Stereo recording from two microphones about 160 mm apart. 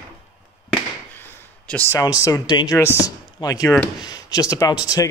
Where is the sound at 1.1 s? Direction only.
10° left (ahead or behind).